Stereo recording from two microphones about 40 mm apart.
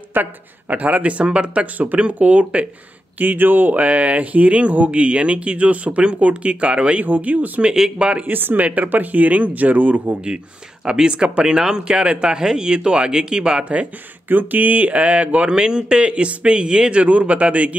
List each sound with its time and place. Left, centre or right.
0.1 s speech: right
3.2 s speech: right
3.8 s speech: right
7.1 s speech: right
10.9 s speech: right
14.3 s speech: right
17.0 s speech: right